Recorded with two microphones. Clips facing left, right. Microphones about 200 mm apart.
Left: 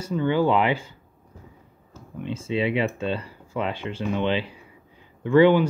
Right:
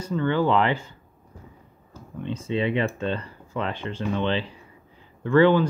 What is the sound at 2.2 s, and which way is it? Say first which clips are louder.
Speech: even; 10° left (ahead or behind).